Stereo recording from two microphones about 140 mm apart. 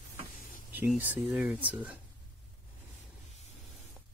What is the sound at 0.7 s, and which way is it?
Speech, 10° right (ahead or behind).